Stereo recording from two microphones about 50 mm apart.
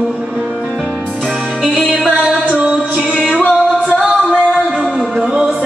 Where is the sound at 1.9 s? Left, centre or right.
Centre.